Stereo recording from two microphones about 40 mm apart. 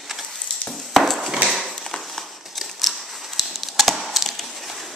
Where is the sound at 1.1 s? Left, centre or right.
Centre.